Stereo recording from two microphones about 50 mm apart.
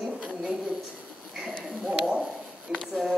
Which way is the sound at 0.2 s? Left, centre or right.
Centre.